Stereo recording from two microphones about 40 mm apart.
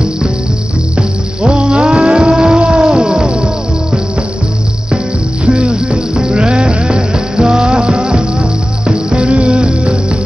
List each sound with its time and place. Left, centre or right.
1.4 s music: right
1.7 s music: centre
2.1 s cat: right
3.1 s music: centre
4.9 s music: right; by 8.3 s centre
8.4 s music: right